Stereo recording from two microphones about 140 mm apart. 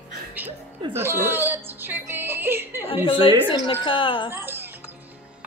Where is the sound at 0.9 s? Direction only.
15° right (ahead or behind).